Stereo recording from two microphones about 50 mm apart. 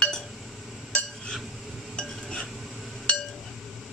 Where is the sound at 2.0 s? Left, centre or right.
Centre.